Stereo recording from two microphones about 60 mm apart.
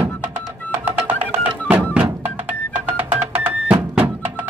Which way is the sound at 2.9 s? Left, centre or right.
Right.